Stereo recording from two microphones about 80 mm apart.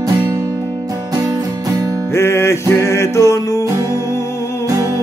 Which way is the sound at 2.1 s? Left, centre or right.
Left.